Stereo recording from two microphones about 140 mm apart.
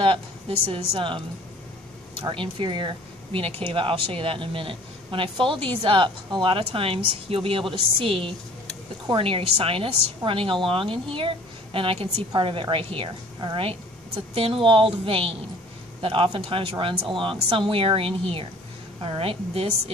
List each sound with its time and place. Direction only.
0.0 s a woman's voice: 40° right (ahead or behind)
2.2 s speech: 35° right (ahead or behind)